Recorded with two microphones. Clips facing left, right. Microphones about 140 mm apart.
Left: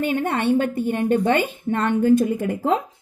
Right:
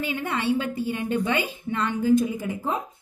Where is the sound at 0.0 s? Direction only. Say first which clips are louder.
Left 6 dB; 50° left (ahead or behind).